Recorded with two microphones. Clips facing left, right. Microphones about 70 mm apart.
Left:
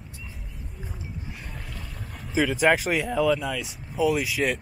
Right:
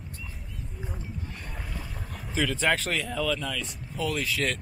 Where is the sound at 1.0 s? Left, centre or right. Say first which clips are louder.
Left 1 dB; centre.